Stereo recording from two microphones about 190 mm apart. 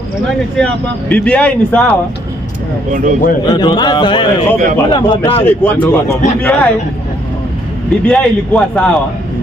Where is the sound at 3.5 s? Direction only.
20° left (ahead or behind).